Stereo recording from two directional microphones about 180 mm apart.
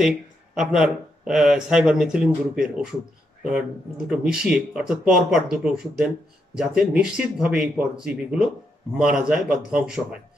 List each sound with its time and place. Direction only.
0.6 s speech: 5° right (ahead or behind)
4.1 s a man's voice: 5° right (ahead or behind)